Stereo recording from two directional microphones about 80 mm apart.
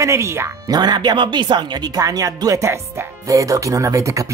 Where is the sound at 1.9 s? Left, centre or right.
Right.